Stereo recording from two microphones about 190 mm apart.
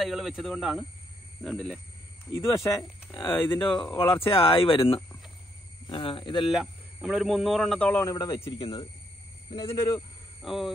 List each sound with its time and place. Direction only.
0.0 s speech: centre (ahead or behind)
3.2 s speech: 10° left (ahead or behind)
3.5 s speech: 25° left (ahead or behind)
6.3 s speech: centre (ahead or behind); by 8.5 s 20° left (ahead or behind)
8.5 s speech: 30° left (ahead or behind)
10.4 s speech: centre (ahead or behind)